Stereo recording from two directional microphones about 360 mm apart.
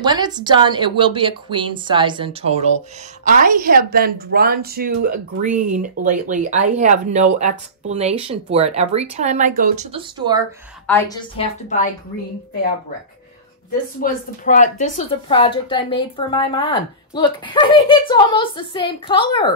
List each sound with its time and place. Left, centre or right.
0.0 s a woman's voice: centre
10.9 s a woman's voice: centre
14.0 s a woman's voice: left